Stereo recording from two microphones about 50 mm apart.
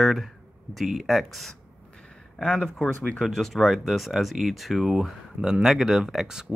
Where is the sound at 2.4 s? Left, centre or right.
Centre.